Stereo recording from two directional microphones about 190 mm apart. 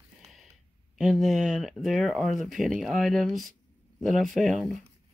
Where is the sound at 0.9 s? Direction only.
Centre (ahead or behind).